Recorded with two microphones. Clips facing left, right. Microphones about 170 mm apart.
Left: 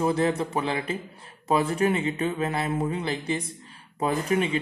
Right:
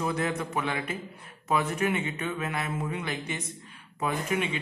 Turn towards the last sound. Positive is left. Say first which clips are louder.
# left 5 dB
turn(degrees=35)  # may be behind; listen again after turning